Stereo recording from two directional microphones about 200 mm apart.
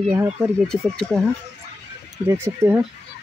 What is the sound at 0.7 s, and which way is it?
Speech, 5° left (ahead or behind).